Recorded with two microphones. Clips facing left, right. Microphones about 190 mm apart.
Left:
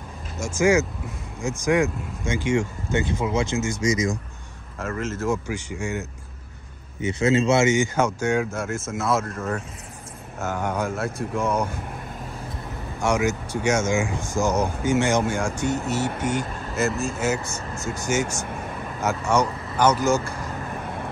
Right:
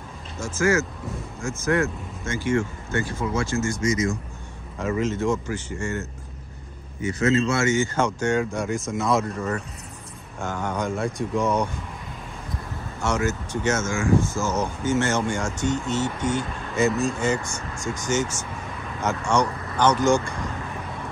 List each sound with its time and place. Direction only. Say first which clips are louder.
0.4 s speech: left 3 dB; 15° left (ahead or behind)
4.7 s speech: right 4 dB; centre (ahead or behind)
7.0 s speech: left 1 dB; 25° left (ahead or behind); by 11.7 s centre (ahead or behind)
13.0 s speech: left 2 dB; 15° left (ahead or behind)